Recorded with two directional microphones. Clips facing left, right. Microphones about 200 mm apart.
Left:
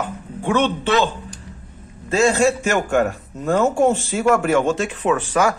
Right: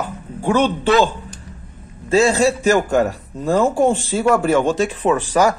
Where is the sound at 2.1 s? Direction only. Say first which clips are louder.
Right 2 dB; 35° right (ahead or behind).